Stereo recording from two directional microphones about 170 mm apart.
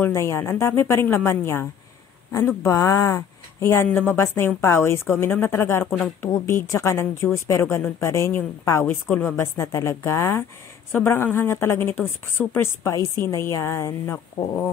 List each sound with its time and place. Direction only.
0.0 s a woman's voice: 15° left (ahead or behind)